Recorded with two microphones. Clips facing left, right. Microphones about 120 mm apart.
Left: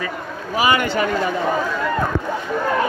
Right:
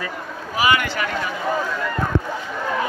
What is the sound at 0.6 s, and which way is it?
Speech, 35° left (ahead or behind).